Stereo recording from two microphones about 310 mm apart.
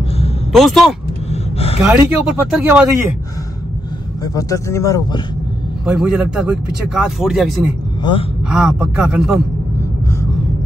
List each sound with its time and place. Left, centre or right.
0.5 s speech: centre
1.3 s a sound: centre
1.8 s speech: centre
4.2 s speech: centre
5.9 s speech: centre
8.0 s speech: centre
8.5 s speech: centre